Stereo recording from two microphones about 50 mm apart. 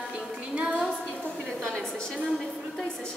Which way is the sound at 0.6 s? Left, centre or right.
Centre.